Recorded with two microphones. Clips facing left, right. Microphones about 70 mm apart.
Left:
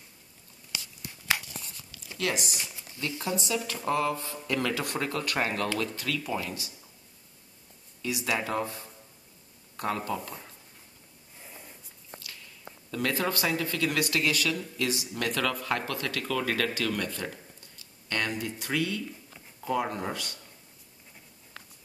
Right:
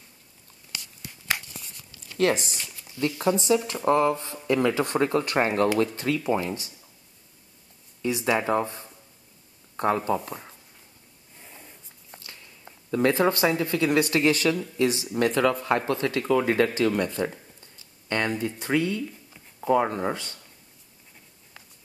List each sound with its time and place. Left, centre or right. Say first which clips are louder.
2.1 s speech: right 8 dB; right
2.5 s speech: even; centre
3.2 s speech: right 9 dB; right
8.0 s speech: right 6 dB; right
11.4 s a sound: even; centre
12.9 s speech: right 8 dB; right